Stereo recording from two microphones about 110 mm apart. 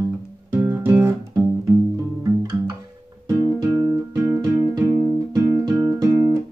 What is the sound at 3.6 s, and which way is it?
Music, 30° right (ahead or behind).